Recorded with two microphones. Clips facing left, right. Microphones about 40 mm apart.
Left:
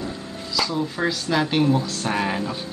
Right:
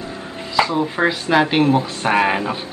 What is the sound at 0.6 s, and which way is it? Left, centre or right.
A woman's voice, right.